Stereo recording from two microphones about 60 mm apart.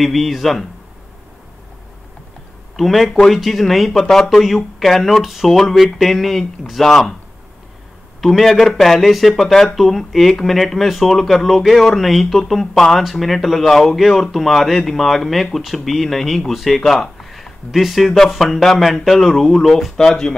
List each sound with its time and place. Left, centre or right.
0.0 s speech: centre
2.7 s speech: centre
8.2 s speech: centre